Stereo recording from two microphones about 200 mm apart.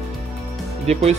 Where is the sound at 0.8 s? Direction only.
35° right (ahead or behind).